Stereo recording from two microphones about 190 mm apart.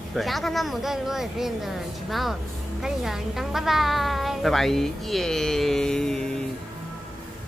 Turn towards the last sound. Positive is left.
turn(degrees=5)  # may be behind; listen again after turning